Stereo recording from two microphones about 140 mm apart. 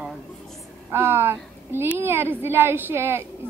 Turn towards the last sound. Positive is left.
turn(degrees=-15)  # may be behind; listen again after turning